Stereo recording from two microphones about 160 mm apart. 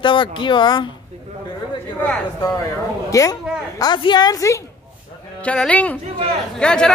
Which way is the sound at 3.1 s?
20° left (ahead or behind).